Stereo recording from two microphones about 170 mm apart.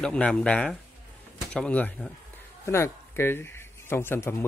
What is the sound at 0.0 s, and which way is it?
Speech, 5° left (ahead or behind).